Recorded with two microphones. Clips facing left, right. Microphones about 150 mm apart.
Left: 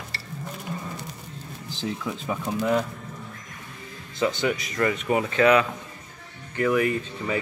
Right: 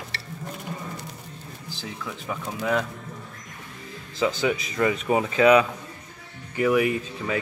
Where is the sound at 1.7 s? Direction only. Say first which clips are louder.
Left 6 dB; 15° left (ahead or behind).